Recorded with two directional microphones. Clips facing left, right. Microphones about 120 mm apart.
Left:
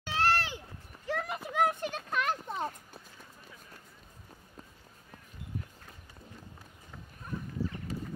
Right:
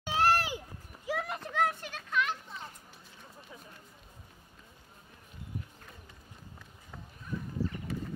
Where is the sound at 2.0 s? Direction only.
40° left (ahead or behind).